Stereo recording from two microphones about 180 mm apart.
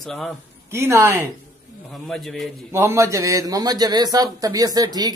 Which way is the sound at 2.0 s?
5° left (ahead or behind).